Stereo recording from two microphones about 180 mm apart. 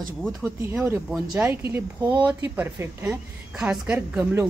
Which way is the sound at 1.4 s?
10° right (ahead or behind).